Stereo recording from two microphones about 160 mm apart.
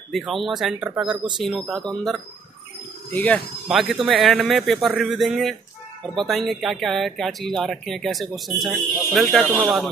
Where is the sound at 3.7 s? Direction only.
Centre (ahead or behind).